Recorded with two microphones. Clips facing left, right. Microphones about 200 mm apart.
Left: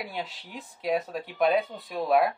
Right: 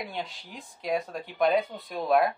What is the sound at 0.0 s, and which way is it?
Speech, 5° left (ahead or behind).